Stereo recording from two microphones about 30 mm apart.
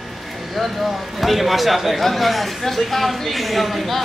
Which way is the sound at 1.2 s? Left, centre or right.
Centre.